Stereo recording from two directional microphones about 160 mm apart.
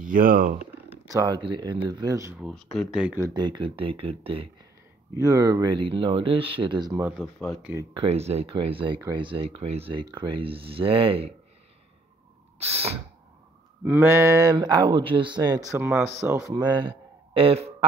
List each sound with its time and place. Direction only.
0.0 s speech: 60° right (ahead or behind)
1.0 s speech: 20° right (ahead or behind)
2.3 s speech: centre (ahead or behind)
3.2 s speech: 20° right (ahead or behind)
5.1 s speech: 20° right (ahead or behind)
7.0 s speech: 10° right (ahead or behind)
7.9 s speech: 40° right (ahead or behind)
12.5 s gasp: 40° right (ahead or behind)
13.8 s speech: 15° right (ahead or behind); by 17.8 s 40° right (ahead or behind)